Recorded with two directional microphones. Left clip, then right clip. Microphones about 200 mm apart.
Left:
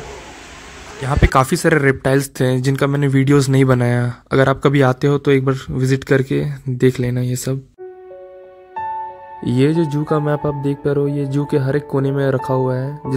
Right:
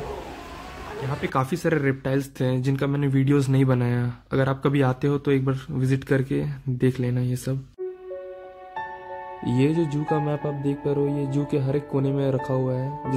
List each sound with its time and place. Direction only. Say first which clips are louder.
1.0 s speech: left 11 dB; 40° left (ahead or behind)
9.4 s speech: left 7 dB; 30° left (ahead or behind)